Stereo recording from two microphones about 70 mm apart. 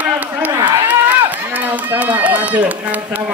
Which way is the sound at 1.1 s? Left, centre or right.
Right.